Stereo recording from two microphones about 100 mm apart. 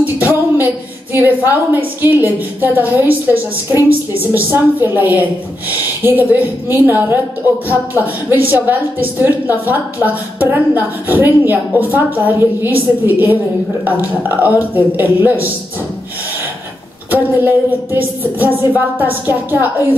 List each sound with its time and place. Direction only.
0.0 s music: 20° right (ahead or behind)
1.1 s a woman's voice: 20° right (ahead or behind)
4.3 s a woman's voice: 20° right (ahead or behind)
17.1 s a woman's voice: 15° right (ahead or behind)